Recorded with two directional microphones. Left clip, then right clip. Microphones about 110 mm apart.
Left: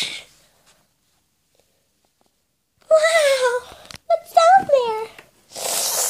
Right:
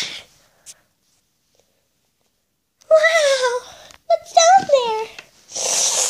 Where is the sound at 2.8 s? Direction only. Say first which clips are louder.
Right 1 dB; 5° left (ahead or behind).